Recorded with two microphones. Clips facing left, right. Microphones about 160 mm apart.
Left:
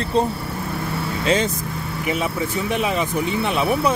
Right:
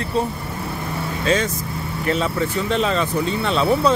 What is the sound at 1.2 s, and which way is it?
Speech, 30° left (ahead or behind).